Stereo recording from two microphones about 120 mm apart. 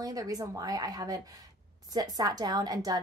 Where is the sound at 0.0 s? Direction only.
30° right (ahead or behind).